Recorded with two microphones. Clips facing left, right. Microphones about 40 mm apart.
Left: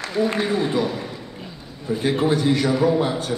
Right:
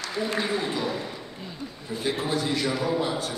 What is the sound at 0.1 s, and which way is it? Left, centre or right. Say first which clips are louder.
Speech: left 6 dB; left.